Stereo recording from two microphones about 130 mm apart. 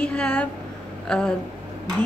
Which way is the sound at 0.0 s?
10° left (ahead or behind).